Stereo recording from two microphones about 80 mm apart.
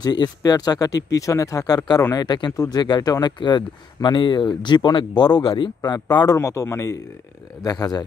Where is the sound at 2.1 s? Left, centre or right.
Left.